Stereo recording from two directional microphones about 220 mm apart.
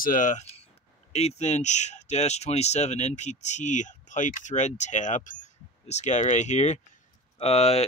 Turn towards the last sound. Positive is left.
turn(degrees=30)  # may be behind; listen again after turning